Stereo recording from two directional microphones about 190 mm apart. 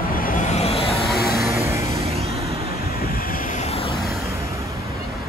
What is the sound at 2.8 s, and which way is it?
Vehicle, 50° left (ahead or behind).